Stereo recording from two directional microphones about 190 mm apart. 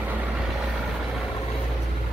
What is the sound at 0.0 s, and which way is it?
Vehicle, 10° right (ahead or behind).